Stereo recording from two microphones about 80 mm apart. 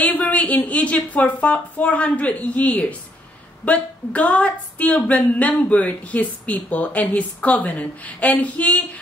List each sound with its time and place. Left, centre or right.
0.0 s speech: centre